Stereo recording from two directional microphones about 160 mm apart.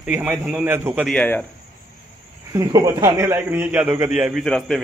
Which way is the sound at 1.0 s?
10° left (ahead or behind).